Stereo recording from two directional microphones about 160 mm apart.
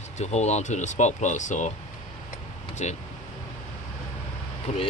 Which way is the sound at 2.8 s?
45° left (ahead or behind).